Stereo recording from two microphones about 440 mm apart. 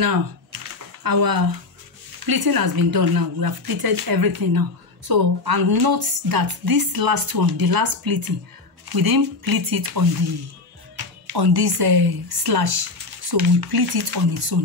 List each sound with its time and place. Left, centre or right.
0.0 s speech: right
11.3 s speech: right